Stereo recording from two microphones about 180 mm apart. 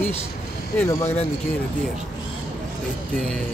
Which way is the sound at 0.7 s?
15° left (ahead or behind).